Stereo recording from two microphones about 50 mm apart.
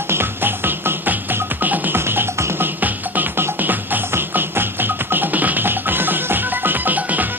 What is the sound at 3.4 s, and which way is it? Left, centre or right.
Music, right.